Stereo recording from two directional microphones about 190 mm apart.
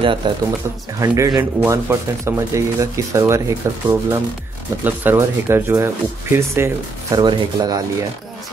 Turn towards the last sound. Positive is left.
turn(degrees=-20)  # may be behind; listen again after turning